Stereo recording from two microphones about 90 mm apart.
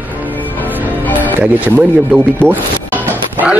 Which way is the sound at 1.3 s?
15° right (ahead or behind).